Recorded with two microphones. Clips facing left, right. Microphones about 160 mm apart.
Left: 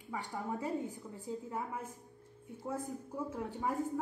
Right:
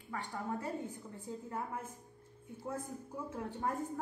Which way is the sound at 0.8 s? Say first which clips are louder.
Left 2 dB; centre (ahead or behind).